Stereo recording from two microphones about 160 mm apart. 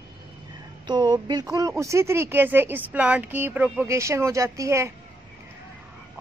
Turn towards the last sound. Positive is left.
turn(degrees=-20)  # may be behind; listen again after turning